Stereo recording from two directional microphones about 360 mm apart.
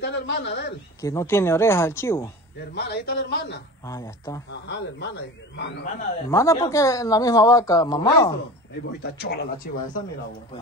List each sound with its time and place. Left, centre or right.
0.0 s a man's voice: left
1.0 s speech: centre
2.7 s a man's voice: left
3.8 s speech: centre
4.6 s a man's voice: left
6.2 s speech: centre
9.0 s a man's voice: left